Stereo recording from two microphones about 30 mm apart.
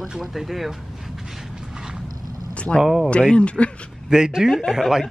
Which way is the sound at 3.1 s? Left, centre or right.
Left.